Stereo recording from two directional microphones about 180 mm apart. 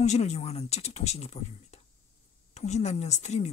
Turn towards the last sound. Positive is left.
turn(degrees=40)  # may be behind; listen again after turning